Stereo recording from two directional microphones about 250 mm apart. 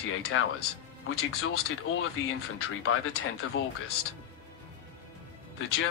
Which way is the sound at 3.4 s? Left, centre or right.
Left.